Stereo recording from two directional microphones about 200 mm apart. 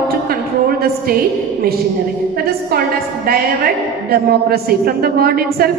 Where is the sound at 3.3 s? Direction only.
50° right (ahead or behind).